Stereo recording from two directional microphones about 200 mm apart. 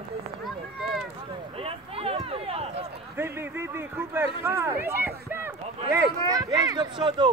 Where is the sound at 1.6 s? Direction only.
30° right (ahead or behind).